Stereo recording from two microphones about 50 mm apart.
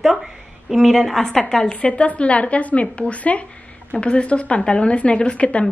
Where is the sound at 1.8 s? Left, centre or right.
Left.